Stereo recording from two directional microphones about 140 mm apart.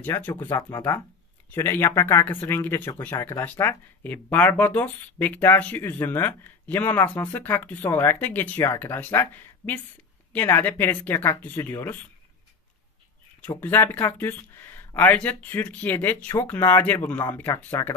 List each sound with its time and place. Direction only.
0.0 s speech: 15° left (ahead or behind)
13.6 s speech: 15° left (ahead or behind)